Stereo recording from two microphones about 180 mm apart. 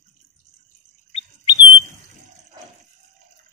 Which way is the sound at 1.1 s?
30° left (ahead or behind).